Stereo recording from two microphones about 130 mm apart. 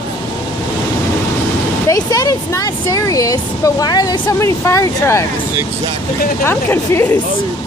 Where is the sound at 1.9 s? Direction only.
25° left (ahead or behind).